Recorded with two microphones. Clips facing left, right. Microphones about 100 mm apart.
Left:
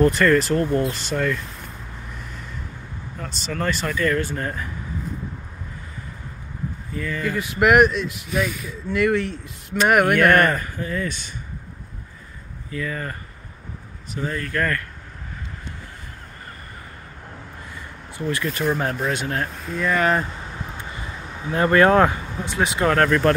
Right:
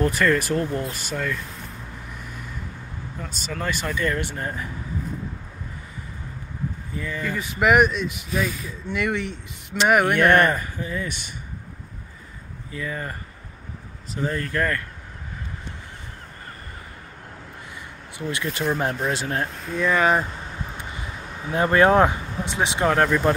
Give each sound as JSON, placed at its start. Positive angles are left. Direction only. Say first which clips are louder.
{"t": 0.0, "sound": "speech", "louder": "left 4 dB", "side_deg": -5}
{"t": 3.4, "sound": "speech", "louder": "left 3 dB", "side_deg": -10}
{"t": 7.0, "sound": "speech", "louder": "left 3 dB", "side_deg": -20}
{"t": 7.2, "sound": "speech", "louder": "left 2 dB", "side_deg": 5}
{"t": 8.3, "sound": "speech", "louder": "left 2 dB", "side_deg": -35}
{"t": 8.9, "sound": "speech", "louder": "left 5 dB", "side_deg": -5}
{"t": 10.1, "sound": "speech", "louder": "left 1 dB", "side_deg": -20}
{"t": 12.7, "sound": "speech", "louder": "left 2 dB", "side_deg": -25}
{"t": 14.1, "sound": "speech", "louder": "even", "side_deg": -30}
{"t": 18.1, "sound": "speech", "louder": "left 3 dB", "side_deg": -20}
{"t": 19.9, "sound": "speech", "louder": "even", "side_deg": -15}
{"t": 21.5, "sound": "speech", "louder": "left 1 dB", "side_deg": -15}